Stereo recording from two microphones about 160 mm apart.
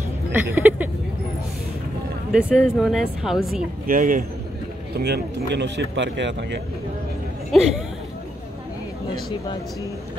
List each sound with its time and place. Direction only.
0.3 s speech: 15° right (ahead or behind)
2.3 s speech: 5° right (ahead or behind)
3.8 s speech: 60° right (ahead or behind)
4.9 s speech: 90° right
7.5 s speech: centre (ahead or behind)